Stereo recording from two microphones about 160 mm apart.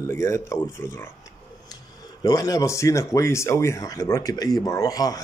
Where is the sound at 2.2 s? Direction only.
25° left (ahead or behind).